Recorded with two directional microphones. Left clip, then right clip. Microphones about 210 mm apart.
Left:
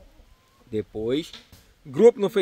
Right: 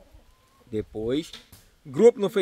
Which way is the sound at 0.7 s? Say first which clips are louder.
Left 2 dB; centre (ahead or behind).